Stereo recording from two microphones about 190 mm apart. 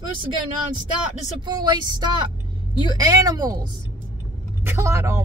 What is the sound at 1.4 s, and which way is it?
Speech, 20° right (ahead or behind).